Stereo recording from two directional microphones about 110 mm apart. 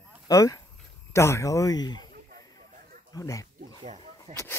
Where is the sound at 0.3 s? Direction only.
30° left (ahead or behind).